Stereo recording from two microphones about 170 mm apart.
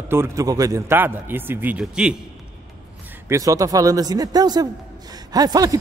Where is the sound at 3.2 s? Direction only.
20° right (ahead or behind).